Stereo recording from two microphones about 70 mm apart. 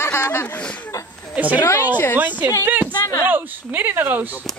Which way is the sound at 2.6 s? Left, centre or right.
Right.